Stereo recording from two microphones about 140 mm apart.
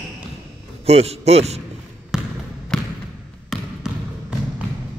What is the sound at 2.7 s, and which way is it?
Basketball bounce, 5° left (ahead or behind).